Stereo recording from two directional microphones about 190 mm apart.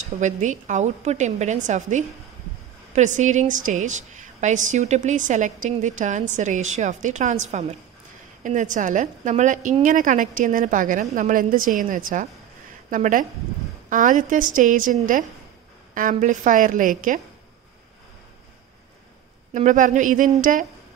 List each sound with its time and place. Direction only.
0.2 s a woman's voice: 40° right (ahead or behind)
19.5 s a woman's voice: 40° right (ahead or behind)